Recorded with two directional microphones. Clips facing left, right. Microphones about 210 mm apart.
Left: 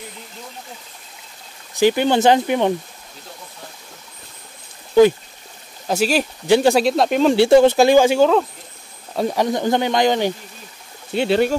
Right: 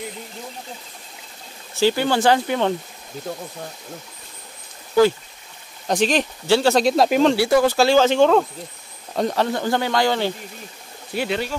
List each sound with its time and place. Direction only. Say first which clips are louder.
1.8 s speech: left 3 dB; 20° left (ahead or behind)
5.9 s speech: left 1 dB; 5° left (ahead or behind)
6.8 s speech: even; centre (ahead or behind)
7.3 s speech: left 5 dB; 25° left (ahead or behind)